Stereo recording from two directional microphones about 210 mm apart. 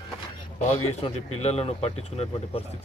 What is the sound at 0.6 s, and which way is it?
Speech, 30° left (ahead or behind).